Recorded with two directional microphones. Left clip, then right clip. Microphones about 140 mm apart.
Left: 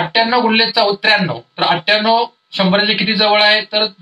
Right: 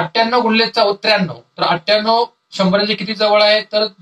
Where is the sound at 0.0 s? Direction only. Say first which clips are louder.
Left 1 dB; 15° left (ahead or behind).